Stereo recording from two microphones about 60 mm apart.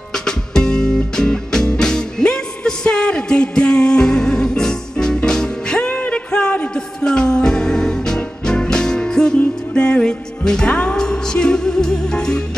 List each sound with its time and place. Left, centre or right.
0.1 s music: centre
5.8 s music: left